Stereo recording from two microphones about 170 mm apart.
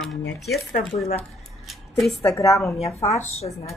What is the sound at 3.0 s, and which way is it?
Speech, 40° left (ahead or behind).